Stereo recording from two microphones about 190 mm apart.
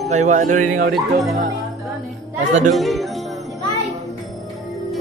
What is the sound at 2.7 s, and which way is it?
Speech, centre (ahead or behind).